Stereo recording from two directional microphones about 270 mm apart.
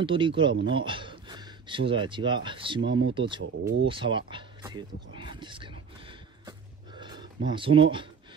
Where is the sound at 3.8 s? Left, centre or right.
Centre.